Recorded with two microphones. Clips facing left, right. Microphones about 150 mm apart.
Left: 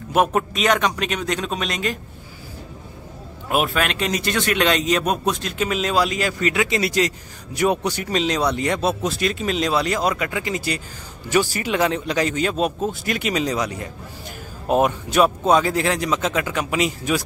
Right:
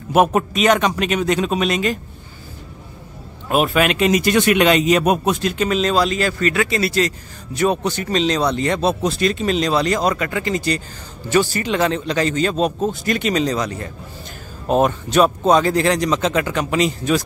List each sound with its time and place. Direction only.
0.1 s a man's voice: 5° right (ahead or behind)
3.4 s a man's voice: 5° left (ahead or behind)